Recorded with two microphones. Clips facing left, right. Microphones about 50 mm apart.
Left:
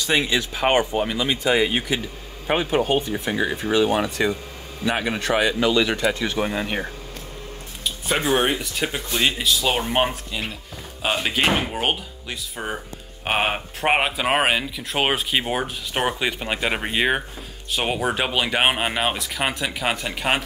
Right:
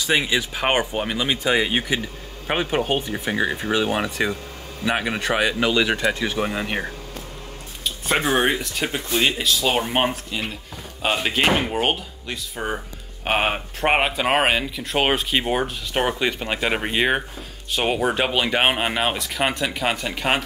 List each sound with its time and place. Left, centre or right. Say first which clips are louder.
0.0 s speech: even; centre
8.5 s speech: right 1 dB; centre